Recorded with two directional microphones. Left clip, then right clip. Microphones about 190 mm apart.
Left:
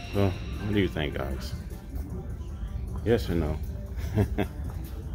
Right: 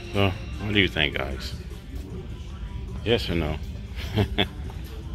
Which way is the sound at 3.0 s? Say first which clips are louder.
Right 2 dB; 15° left (ahead or behind).